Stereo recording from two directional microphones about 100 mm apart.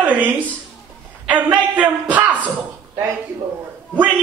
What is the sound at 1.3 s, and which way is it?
A man's voice, 15° right (ahead or behind).